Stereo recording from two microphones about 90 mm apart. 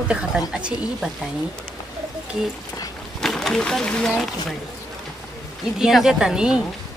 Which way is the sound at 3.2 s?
5° left (ahead or behind).